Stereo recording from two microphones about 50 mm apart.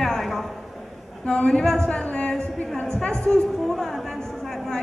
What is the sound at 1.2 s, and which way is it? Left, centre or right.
A man's voice, centre.